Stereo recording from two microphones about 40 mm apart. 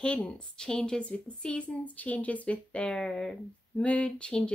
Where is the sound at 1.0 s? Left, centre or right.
Left.